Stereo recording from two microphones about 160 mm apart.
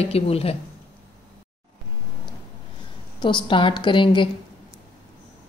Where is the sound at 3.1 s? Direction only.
30° left (ahead or behind).